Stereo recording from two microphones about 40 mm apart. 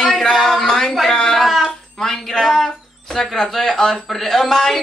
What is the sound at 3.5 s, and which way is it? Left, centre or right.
Speech, centre.